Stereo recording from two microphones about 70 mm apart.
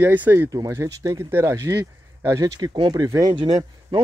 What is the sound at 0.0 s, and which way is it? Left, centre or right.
Speech, right.